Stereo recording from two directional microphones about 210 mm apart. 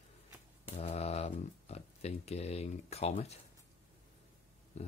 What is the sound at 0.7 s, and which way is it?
Speech, 30° left (ahead or behind).